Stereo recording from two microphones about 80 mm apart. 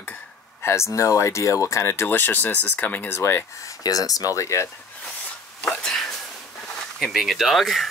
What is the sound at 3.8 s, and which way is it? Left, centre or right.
Speech, left.